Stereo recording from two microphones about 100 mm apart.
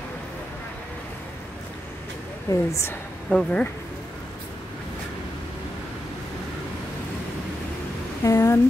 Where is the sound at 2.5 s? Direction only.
30° left (ahead or behind).